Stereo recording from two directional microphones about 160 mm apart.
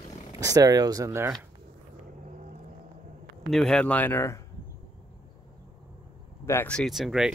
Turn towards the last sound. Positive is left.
turn(degrees=0)  # may be behind; listen again after turning